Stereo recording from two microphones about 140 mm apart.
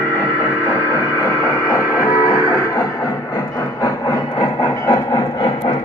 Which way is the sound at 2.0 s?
25° left (ahead or behind).